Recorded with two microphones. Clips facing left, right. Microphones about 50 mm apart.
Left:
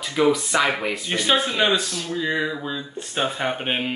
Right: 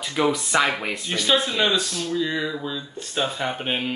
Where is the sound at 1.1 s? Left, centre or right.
Left.